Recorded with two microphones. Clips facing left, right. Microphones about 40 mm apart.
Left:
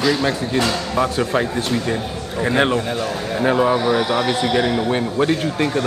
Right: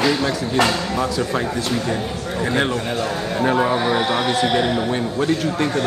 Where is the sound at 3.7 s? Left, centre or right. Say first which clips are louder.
Left 1 dB; right.